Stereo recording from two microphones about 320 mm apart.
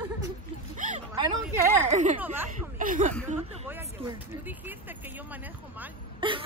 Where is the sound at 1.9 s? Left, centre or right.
Right.